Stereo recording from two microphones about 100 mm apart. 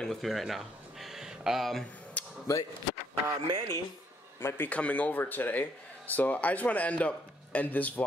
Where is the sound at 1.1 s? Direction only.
5° right (ahead or behind).